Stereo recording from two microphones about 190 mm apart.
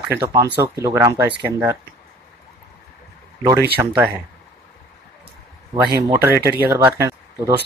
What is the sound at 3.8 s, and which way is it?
Speech, 15° right (ahead or behind).